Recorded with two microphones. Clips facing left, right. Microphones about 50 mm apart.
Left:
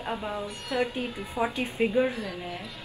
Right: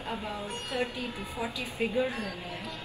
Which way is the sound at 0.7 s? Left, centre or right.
Left.